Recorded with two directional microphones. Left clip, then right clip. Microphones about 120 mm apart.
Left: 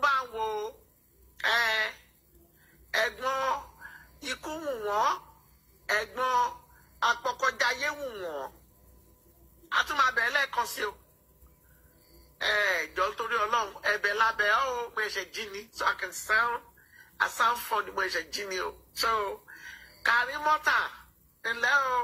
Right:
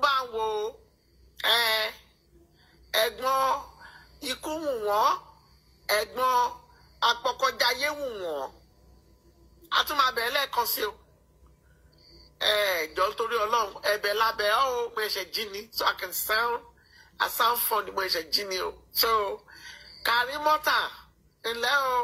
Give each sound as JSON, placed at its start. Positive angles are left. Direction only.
{"t": 0.0, "sound": "a sound", "side_deg": -30}
{"t": 2.9, "sound": "a man's voice", "side_deg": -30}
{"t": 9.7, "sound": "speech", "side_deg": -25}
{"t": 12.4, "sound": "speech", "side_deg": -30}